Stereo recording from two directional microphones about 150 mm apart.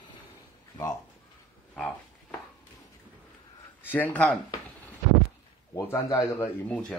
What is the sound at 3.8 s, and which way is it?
Speech, 10° left (ahead or behind).